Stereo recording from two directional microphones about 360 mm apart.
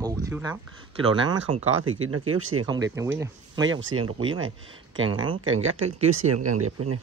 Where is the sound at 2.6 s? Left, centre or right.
Centre.